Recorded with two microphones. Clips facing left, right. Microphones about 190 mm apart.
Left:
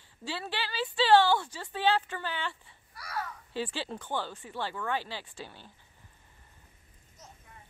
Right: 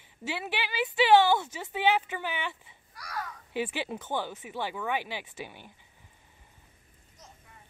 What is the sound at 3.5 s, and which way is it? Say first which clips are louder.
A woman's voice: right 3 dB; 15° right (ahead or behind).